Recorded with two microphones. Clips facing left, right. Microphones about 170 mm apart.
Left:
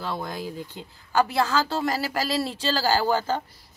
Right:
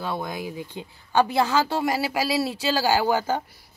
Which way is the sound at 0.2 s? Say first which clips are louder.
Right 1 dB; 15° right (ahead or behind).